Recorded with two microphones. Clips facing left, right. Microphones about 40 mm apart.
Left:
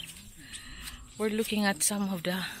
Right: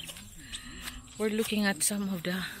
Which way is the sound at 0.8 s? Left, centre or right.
Right.